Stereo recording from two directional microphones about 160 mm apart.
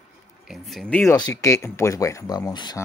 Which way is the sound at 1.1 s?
25° left (ahead or behind).